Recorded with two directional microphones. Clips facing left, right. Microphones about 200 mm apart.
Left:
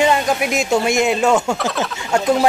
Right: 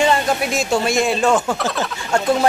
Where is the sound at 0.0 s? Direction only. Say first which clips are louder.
Left 1 dB; 15° left (ahead or behind).